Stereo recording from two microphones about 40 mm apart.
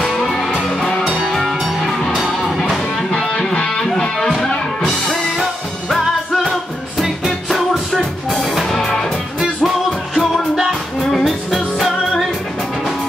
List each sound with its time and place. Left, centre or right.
0.0 s music: centre
0.5 s music: centre
3.5 s music: centre
10.5 s music: centre
11.1 s music: centre